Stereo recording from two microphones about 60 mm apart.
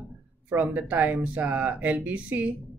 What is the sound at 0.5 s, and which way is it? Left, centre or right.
Speech, right.